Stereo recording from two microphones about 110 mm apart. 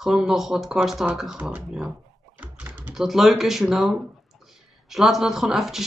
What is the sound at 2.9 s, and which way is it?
Speech, 5° right (ahead or behind).